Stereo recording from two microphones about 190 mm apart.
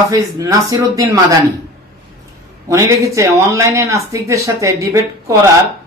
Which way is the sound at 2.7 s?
15° right (ahead or behind).